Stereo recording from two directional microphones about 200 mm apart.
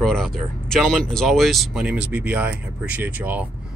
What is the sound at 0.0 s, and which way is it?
Speech, centre (ahead or behind).